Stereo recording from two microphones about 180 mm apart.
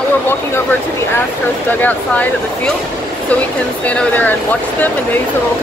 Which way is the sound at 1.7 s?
10° left (ahead or behind).